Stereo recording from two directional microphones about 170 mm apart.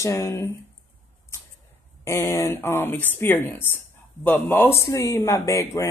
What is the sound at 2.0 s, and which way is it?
A man's voice, 15° left (ahead or behind).